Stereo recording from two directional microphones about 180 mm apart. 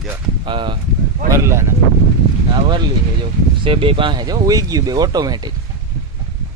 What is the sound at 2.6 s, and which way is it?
Speech, 25° right (ahead or behind).